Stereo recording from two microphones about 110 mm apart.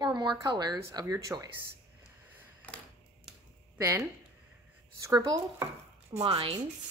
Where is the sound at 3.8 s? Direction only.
25° right (ahead or behind).